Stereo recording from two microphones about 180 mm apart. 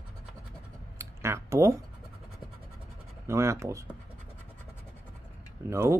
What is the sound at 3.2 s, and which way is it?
Speech, 15° right (ahead or behind).